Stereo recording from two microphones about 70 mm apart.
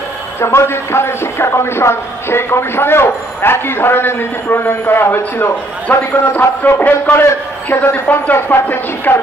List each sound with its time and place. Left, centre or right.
0.4 s a man's voice: left